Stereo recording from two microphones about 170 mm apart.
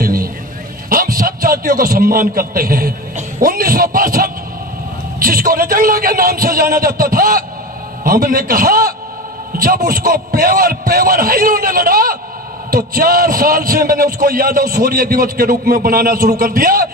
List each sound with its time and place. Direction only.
0.0 s vehicle: 60° right (ahead or behind)
0.8 s a sound: 55° right (ahead or behind)
5.2 s a man's voice: 60° right (ahead or behind)